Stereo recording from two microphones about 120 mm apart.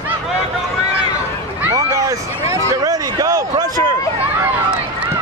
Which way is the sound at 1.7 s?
25° right (ahead or behind).